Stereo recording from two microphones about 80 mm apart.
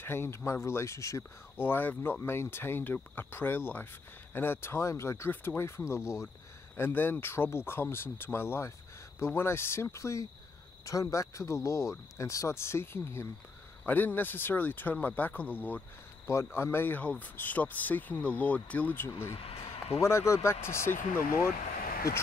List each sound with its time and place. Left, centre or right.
0.0 s speech: left
5.9 s speech: centre
6.8 s speech: left
20.0 s speech: left